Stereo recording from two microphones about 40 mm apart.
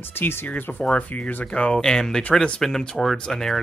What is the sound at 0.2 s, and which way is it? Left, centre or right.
Speech, left.